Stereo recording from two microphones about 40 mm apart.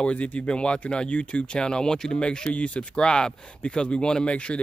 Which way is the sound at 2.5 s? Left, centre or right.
Left.